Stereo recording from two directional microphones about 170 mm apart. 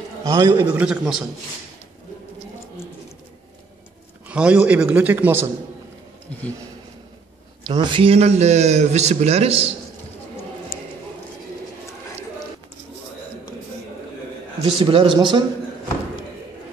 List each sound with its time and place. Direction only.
0.2 s a man's voice: 20° right (ahead or behind)
4.3 s a man's voice: 5° right (ahead or behind)
7.6 s a man's voice: 25° right (ahead or behind)
14.7 s a man's voice: 35° right (ahead or behind)